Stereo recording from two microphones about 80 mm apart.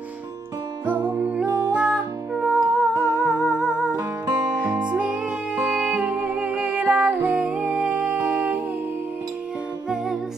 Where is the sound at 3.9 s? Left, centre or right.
Right.